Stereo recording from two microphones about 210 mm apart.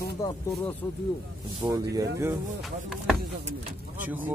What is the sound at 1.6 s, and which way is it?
Speech, 15° right (ahead or behind).